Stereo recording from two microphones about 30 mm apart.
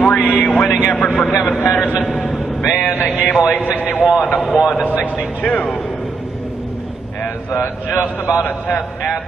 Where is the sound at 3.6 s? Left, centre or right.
Right.